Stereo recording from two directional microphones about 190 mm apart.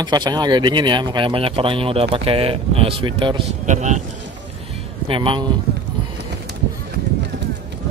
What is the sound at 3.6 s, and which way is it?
Speech, 40° right (ahead or behind).